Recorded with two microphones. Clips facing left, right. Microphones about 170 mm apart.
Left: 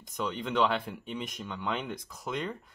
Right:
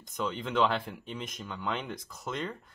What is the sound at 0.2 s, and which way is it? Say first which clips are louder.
Speech: even; centre (ahead or behind).